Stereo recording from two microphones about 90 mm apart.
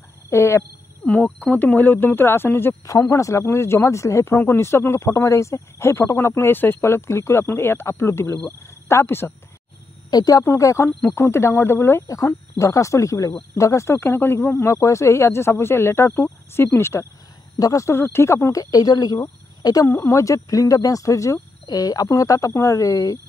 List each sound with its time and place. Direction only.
0.3 s speech: 30° left (ahead or behind)
1.0 s speech: 15° left (ahead or behind)
2.9 s speech: 35° left (ahead or behind)
10.1 s speech: 45° left (ahead or behind)
10.4 s speech: 35° left (ahead or behind)
10.9 s speech: 20° left (ahead or behind); by 19.9 s 45° left (ahead or behind)
19.9 s speech: 30° left (ahead or behind)